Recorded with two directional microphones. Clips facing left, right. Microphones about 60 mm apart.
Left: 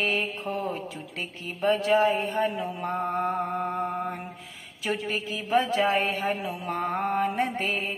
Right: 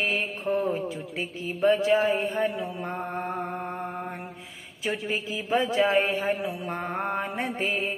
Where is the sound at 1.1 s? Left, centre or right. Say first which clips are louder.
Right 4 dB; centre.